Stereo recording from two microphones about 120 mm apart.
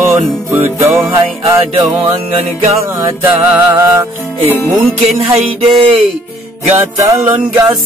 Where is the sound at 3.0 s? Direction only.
20° right (ahead or behind).